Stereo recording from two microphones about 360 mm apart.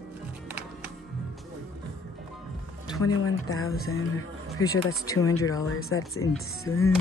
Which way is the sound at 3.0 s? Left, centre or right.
Left.